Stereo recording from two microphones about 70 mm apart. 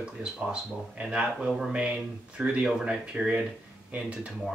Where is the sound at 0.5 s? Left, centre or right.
Centre.